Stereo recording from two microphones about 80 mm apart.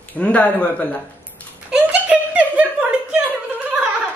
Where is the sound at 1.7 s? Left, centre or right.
Centre.